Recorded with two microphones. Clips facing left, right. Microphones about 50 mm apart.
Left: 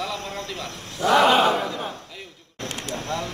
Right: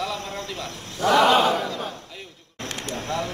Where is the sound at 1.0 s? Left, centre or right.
Centre.